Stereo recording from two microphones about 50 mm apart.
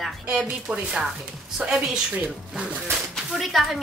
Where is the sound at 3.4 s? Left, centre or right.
Centre.